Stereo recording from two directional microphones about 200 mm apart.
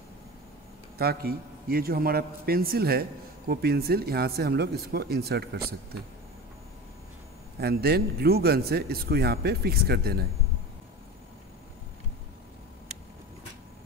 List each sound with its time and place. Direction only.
0.9 s a man's voice: 50° right (ahead or behind)
7.6 s a man's voice: 55° right (ahead or behind)